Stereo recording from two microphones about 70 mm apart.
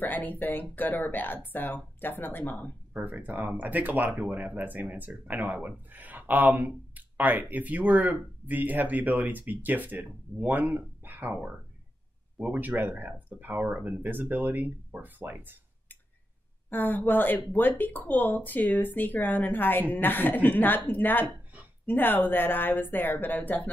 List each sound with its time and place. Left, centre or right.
0.0 s speech: left
2.9 s speech: right
12.5 s speech: right
14.0 s speech: right
16.7 s speech: left